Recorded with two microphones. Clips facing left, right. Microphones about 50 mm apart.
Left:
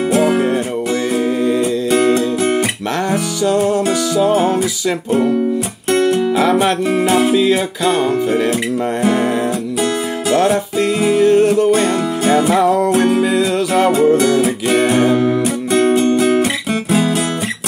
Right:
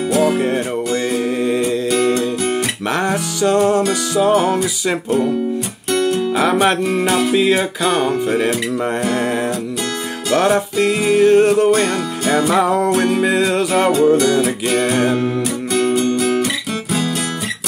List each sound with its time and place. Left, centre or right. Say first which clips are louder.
0.2 s music: even; left
1.9 s music: left 5 dB; left
4.4 s music: left 1 dB; left
5.9 s music: left 3 dB; left
7.3 s music: left 1 dB; right
9.0 s music: left 7 dB; left
11.1 s music: right 1 dB; right
11.7 s music: left 2 dB; left
12.5 s music: left 2 dB; right
13.9 s music: even; left
15.7 s music: left 4 dB; left